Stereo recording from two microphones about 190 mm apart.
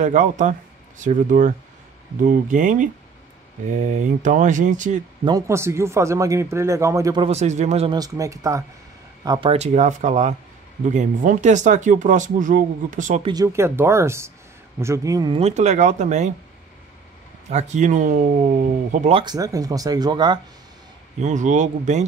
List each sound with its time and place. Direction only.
0.0 s speech: 40° right (ahead or behind)
5.2 s speech: 15° right (ahead or behind)
7.2 s speech: 35° right (ahead or behind)
8.0 s speech: 15° right (ahead or behind); by 13.2 s 40° right (ahead or behind)
13.2 s speech: 20° right (ahead or behind); by 16.3 s 40° right (ahead or behind)
17.5 s speech: 40° right (ahead or behind)
18.9 s speech: 30° right (ahead or behind)
21.2 s speech: 40° right (ahead or behind)